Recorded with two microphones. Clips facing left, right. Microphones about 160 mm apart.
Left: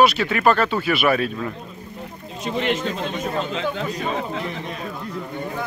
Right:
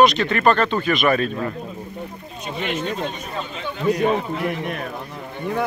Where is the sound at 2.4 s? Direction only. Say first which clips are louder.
Left 3 dB; 90° left.